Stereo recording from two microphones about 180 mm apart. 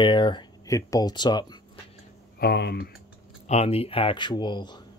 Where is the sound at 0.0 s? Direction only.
25° left (ahead or behind).